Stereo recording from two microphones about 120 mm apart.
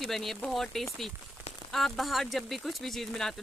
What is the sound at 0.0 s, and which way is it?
Speech, centre (ahead or behind).